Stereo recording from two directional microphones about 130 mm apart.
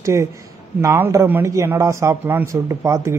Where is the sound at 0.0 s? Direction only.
20° right (ahead or behind).